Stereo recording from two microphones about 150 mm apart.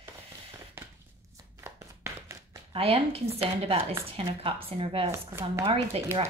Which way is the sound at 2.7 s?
40° right (ahead or behind).